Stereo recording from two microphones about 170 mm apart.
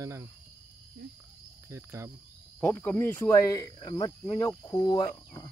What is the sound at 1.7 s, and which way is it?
Speech, 15° right (ahead or behind).